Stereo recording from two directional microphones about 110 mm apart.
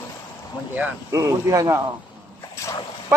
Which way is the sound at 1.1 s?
30° right (ahead or behind).